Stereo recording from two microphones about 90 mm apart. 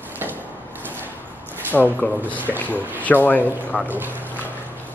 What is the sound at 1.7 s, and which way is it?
Speech, 5° left (ahead or behind).